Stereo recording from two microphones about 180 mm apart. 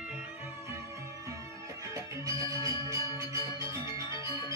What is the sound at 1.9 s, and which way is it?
Music, 20° right (ahead or behind).